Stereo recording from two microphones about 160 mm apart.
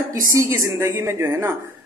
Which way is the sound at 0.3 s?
20° right (ahead or behind).